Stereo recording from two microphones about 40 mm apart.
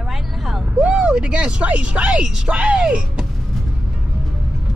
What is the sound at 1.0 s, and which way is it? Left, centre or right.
Speech, right.